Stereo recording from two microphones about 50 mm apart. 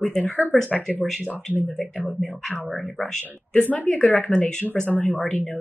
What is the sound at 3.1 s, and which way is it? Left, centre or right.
Speech, centre.